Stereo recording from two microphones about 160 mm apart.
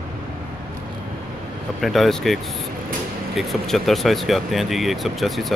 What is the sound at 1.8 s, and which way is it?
Speech, centre (ahead or behind).